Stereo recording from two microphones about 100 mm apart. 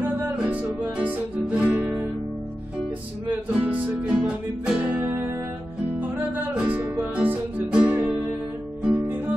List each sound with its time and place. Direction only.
0.0 s music: 15° right (ahead or behind)
3.3 s music: 15° right (ahead or behind)
6.5 s music: 15° right (ahead or behind)